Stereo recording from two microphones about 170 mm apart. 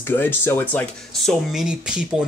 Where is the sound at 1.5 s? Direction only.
5° right (ahead or behind).